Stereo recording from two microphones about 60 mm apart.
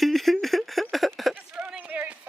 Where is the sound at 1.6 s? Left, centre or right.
Centre.